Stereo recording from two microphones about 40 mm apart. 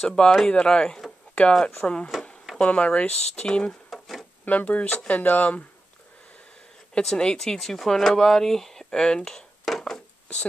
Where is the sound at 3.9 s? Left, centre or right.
Centre.